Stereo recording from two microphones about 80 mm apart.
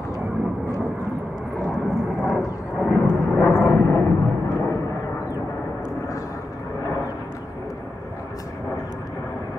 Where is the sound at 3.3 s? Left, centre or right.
Left.